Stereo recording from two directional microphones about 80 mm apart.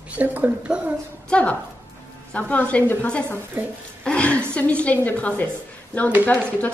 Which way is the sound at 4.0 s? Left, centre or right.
Centre.